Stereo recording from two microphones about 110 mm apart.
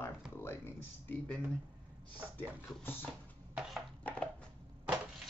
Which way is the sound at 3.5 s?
5° right (ahead or behind).